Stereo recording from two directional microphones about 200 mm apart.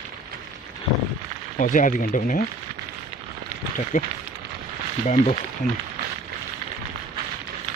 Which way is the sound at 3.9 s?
45° left (ahead or behind).